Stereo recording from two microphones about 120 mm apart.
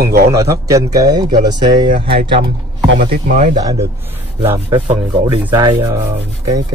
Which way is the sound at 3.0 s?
85° right.